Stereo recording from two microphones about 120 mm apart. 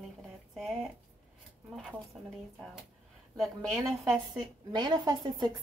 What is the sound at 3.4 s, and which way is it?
Speech, centre (ahead or behind).